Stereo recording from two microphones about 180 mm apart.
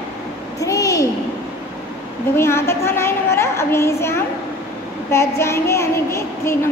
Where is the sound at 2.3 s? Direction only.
15° left (ahead or behind).